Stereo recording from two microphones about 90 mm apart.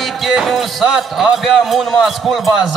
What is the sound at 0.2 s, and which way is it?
Speech, centre (ahead or behind).